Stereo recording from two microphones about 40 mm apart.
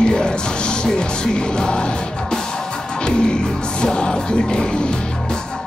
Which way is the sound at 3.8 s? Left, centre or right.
Centre.